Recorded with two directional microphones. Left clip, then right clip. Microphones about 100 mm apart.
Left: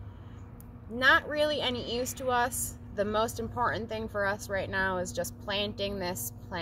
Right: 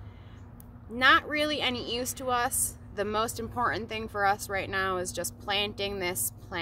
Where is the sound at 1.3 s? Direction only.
35° right (ahead or behind).